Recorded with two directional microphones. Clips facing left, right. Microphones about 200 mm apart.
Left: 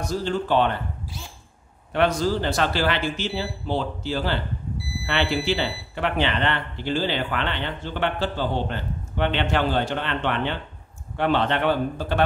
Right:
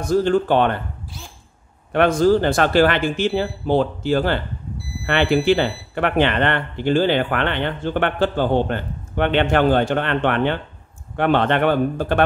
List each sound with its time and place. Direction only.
0.0 s speech: 50° right (ahead or behind)
1.9 s speech: 55° right (ahead or behind)